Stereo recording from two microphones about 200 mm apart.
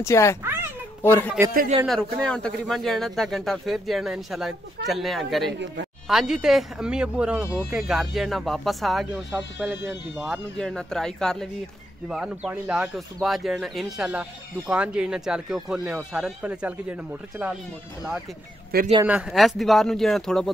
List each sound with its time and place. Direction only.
0.0 s speech: 15° left (ahead or behind)
0.4 s a sound: 10° right (ahead or behind)
1.0 s speech: 10° left (ahead or behind); by 16.7 s 5° right (ahead or behind)
18.7 s speech: 50° right (ahead or behind)
19.0 s speech: 5° right (ahead or behind)